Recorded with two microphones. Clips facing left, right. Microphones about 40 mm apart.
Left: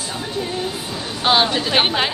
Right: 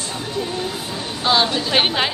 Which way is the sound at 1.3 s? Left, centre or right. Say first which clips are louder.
Left 1 dB; left.